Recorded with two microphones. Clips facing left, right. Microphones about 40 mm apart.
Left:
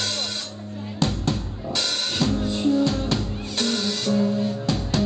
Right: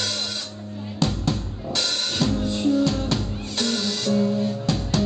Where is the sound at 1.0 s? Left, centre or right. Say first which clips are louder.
Even; centre.